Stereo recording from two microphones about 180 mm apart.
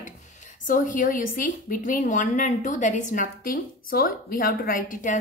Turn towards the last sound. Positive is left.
turn(degrees=45)  # may be behind; listen again after turning